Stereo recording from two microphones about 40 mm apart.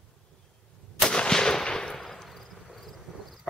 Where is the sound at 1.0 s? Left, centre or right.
Left; by 3.0 s centre.